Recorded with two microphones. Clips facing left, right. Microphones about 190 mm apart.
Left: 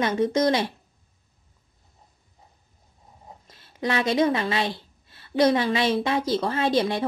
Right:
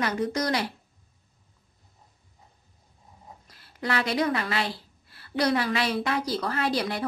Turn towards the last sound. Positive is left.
turn(degrees=25)  # may be behind; listen again after turning